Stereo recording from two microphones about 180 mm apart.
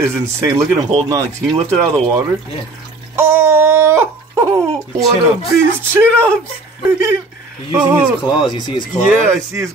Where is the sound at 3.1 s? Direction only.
15° right (ahead or behind).